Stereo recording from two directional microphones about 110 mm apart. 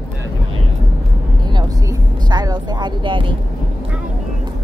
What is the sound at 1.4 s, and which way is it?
Vehicle, 45° right (ahead or behind).